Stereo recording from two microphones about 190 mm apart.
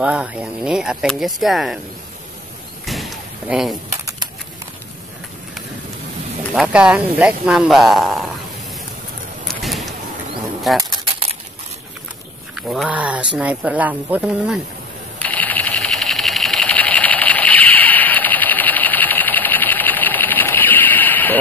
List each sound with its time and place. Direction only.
0.0 s speech: 5° right (ahead or behind)
2.8 s slam: centre (ahead or behind)
6.5 s speech: 5° right (ahead or behind)
9.6 s a sound: centre (ahead or behind)
10.8 s a sound: 25° right (ahead or behind)
12.5 s speech: centre (ahead or behind)
15.1 s sewing machine: 10° left (ahead or behind)